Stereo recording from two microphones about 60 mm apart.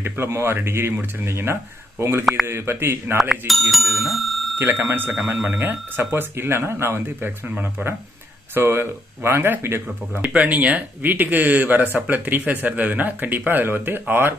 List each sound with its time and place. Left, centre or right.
0.0 s speech: right
3.4 s speech: centre
4.6 s speech: right
7.2 s speech: right
8.5 s speech: right
10.2 s speech: right